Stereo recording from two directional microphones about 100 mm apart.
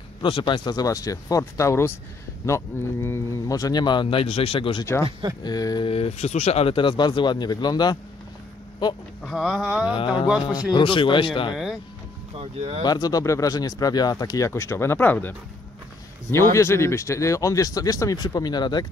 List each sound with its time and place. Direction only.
0.2 s speech: 55° left (ahead or behind)
5.4 s speech: 40° left (ahead or behind)
5.9 s speech: 85° left; by 8.0 s 45° left (ahead or behind)
9.2 s speech: 5° right (ahead or behind)
9.9 s speech: 60° left (ahead or behind)
12.4 s speech: 75° right (ahead or behind)
12.8 s speech: 40° left (ahead or behind)